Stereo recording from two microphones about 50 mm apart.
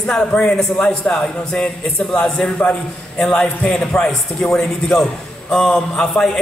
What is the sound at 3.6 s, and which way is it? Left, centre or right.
Speech, centre.